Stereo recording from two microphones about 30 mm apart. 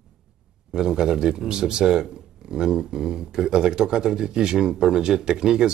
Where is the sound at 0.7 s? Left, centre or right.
Centre.